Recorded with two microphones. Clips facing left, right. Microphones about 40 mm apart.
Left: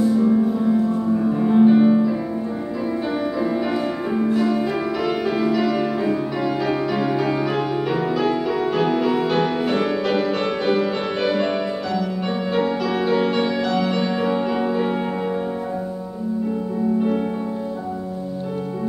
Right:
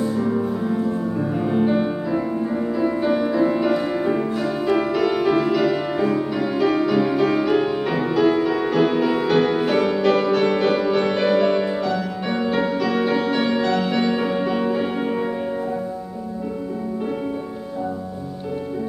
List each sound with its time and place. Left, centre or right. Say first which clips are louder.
0.0 s music: left 4 dB; centre
3.1 s music: right 4 dB; right
3.5 s music: right 2 dB; centre
6.0 s music: even; centre
13.5 s music: right 1 dB; centre